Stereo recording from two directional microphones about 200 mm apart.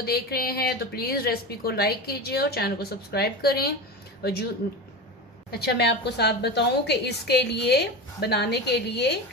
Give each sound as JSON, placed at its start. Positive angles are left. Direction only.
{"t": 0.0, "sound": "a woman's voice", "side_deg": 50}
{"t": 5.5, "sound": "a woman's voice", "side_deg": 55}